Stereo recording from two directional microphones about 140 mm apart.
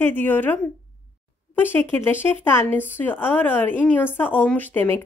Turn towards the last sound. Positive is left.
turn(degrees=15)  # may be behind; listen again after turning